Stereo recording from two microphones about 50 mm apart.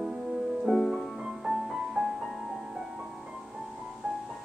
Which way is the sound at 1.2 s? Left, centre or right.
Centre.